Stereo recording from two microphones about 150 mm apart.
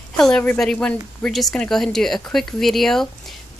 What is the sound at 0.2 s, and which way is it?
A woman's voice, 5° left (ahead or behind).